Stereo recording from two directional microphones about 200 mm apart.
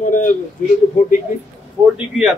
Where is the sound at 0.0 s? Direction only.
40° left (ahead or behind).